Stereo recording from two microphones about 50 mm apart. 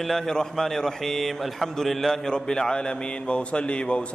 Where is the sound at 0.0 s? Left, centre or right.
Centre.